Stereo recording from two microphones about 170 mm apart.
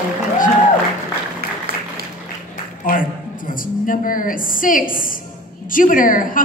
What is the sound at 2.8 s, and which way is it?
A woman's voice, 55° left (ahead or behind).